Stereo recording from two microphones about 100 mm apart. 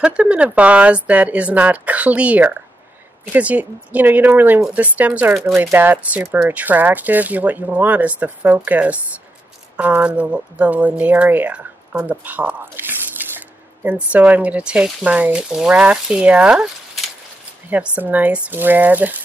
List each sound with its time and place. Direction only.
0.0 s speech: 10° right (ahead or behind)
17.6 s speech: 15° right (ahead or behind)